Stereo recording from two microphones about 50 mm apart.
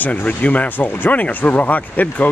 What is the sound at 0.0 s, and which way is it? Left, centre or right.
Speech, left.